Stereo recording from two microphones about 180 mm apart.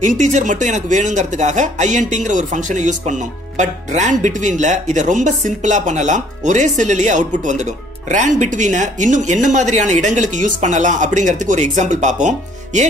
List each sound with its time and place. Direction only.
0.0 s speech: 45° right (ahead or behind)